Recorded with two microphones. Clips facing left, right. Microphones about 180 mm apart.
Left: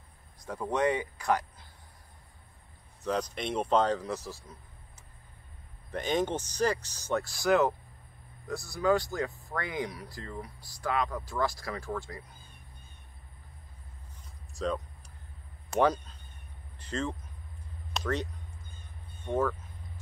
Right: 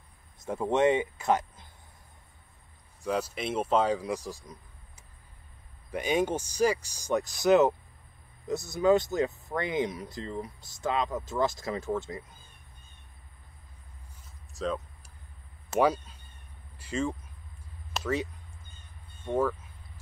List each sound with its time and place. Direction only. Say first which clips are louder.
0.4 s speech: right 4 dB; 25° right (ahead or behind)
3.0 s speech: right 1 dB; 10° right (ahead or behind)
5.9 s speech: right 2 dB; 10° right (ahead or behind)
14.5 s speech: even; centre (ahead or behind)